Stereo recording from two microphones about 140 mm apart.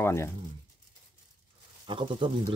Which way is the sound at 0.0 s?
20° left (ahead or behind).